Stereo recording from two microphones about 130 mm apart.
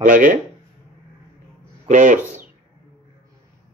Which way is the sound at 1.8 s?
75° right (ahead or behind).